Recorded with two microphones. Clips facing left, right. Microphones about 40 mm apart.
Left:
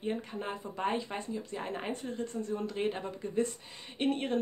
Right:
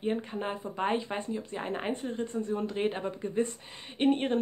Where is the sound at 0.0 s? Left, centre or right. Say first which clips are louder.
Right 4 dB; right.